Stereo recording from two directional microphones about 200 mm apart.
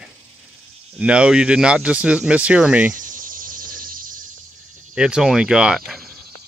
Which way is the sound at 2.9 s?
40° right (ahead or behind).